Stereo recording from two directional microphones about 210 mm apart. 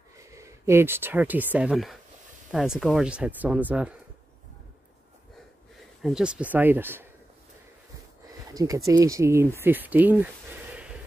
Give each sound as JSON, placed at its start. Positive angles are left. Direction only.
{"t": 0.3, "sound": "speech", "side_deg": -15}
{"t": 6.0, "sound": "speech", "side_deg": -5}
{"t": 8.5, "sound": "speech", "side_deg": -15}